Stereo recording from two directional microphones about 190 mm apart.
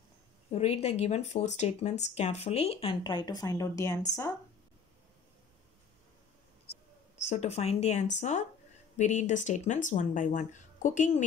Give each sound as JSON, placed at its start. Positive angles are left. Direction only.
{"t": 0.5, "sound": "speech", "side_deg": 35}
{"t": 7.2, "sound": "speech", "side_deg": 35}